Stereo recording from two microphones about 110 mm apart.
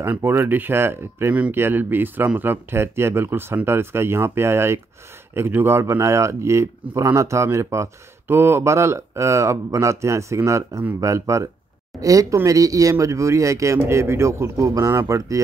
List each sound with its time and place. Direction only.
0.0 s a man's voice: 20° right (ahead or behind)